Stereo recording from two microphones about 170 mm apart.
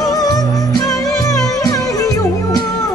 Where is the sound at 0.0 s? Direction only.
20° left (ahead or behind).